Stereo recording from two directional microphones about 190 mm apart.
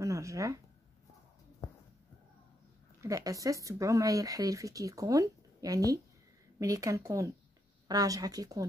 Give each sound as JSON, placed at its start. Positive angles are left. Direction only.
{"t": 0.0, "sound": "speech", "side_deg": -15}
{"t": 3.0, "sound": "speech", "side_deg": -15}